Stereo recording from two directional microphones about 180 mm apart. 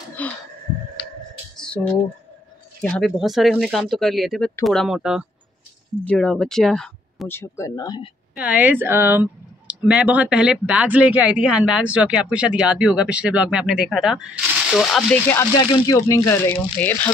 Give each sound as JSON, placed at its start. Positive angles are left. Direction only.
{"t": 0.2, "sound": "a sound", "side_deg": 10}
{"t": 2.8, "sound": "speech", "side_deg": 5}
{"t": 8.4, "sound": "speech", "side_deg": -10}
{"t": 15.5, "sound": "speech", "side_deg": 20}